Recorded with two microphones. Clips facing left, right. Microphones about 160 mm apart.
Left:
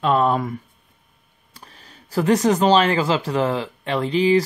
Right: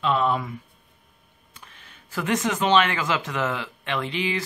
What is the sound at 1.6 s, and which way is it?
Speech, 35° left (ahead or behind).